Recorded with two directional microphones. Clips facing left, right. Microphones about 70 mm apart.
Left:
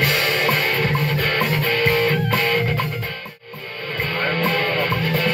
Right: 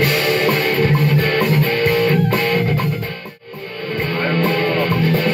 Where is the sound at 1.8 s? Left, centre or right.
Left.